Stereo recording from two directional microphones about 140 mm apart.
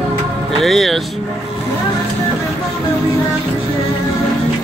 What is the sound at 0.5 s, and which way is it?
Speech, centre (ahead or behind).